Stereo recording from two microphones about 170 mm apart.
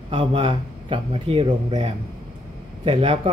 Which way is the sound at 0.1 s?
30° right (ahead or behind).